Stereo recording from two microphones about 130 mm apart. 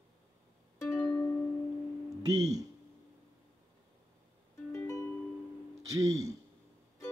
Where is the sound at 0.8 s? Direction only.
30° left (ahead or behind).